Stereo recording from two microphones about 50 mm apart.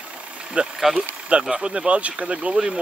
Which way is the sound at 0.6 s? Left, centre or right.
Right.